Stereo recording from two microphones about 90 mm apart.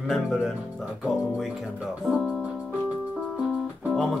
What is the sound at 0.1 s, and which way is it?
Speech, centre (ahead or behind).